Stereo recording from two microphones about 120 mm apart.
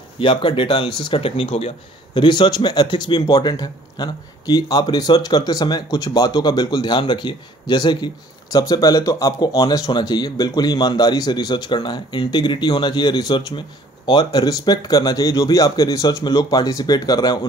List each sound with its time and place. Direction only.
0.2 s speech: 40° left (ahead or behind)
2.1 s speech: 40° left (ahead or behind)